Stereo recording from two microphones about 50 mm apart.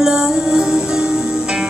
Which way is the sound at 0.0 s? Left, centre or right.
Centre.